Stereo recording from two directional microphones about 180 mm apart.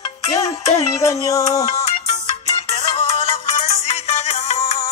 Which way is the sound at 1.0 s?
15° left (ahead or behind).